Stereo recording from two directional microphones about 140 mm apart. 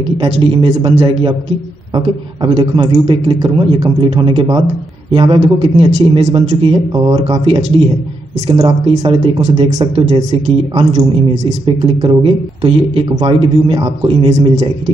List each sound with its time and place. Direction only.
0.0 s a man's voice: 40° right (ahead or behind)